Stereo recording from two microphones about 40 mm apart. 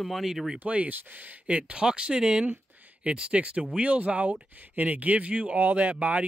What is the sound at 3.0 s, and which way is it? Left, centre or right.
Speech, right.